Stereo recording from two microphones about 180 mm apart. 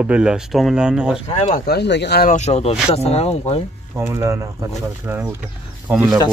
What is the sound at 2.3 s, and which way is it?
Speech, 40° left (ahead or behind).